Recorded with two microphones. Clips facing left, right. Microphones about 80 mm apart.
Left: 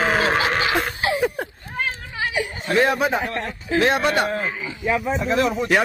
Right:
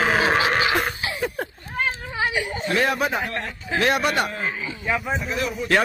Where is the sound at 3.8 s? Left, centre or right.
Left.